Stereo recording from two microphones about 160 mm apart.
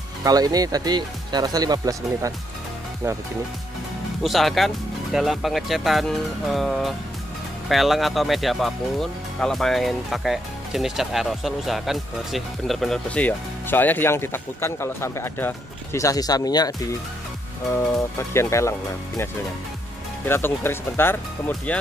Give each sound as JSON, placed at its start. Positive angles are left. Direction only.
{"t": 0.2, "sound": "speech", "side_deg": -25}
{"t": 4.2, "sound": "speech", "side_deg": 0}
{"t": 18.1, "sound": "speech", "side_deg": 15}
{"t": 20.2, "sound": "speech", "side_deg": 15}